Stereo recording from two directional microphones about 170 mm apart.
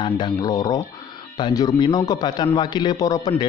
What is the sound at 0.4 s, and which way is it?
Speech, 20° left (ahead or behind).